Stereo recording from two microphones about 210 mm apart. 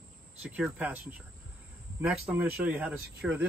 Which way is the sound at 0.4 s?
5° right (ahead or behind).